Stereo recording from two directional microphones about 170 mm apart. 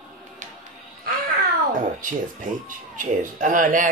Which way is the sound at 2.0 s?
50° right (ahead or behind).